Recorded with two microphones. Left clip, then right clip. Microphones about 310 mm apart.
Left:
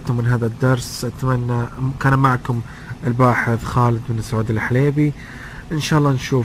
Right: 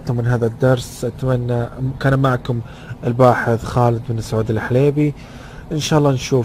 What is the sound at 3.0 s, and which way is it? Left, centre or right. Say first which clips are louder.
Speech: right 3 dB; right.